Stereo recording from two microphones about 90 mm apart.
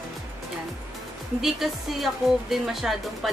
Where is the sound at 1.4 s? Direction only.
Centre (ahead or behind).